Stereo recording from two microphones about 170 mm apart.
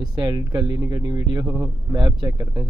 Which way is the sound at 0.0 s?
25° right (ahead or behind).